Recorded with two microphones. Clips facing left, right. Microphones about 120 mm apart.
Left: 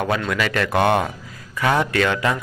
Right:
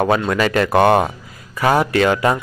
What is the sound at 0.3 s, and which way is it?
Speech, 35° right (ahead or behind).